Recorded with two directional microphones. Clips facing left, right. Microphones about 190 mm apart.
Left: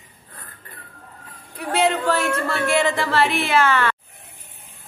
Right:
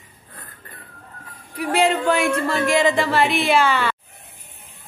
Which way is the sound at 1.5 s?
10° right (ahead or behind).